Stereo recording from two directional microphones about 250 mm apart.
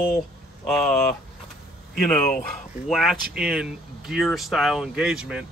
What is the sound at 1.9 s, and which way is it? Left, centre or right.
Speech, left.